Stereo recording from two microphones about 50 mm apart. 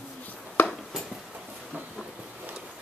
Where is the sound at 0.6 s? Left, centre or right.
Left.